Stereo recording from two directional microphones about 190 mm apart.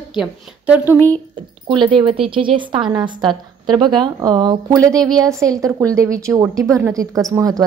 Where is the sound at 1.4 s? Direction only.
25° right (ahead or behind).